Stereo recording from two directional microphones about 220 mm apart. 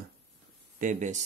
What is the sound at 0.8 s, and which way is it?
Speech, 35° right (ahead or behind).